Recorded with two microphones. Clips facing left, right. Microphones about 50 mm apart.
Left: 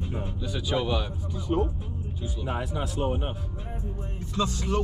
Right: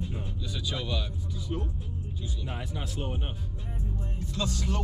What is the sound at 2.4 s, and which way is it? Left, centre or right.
Speech, centre.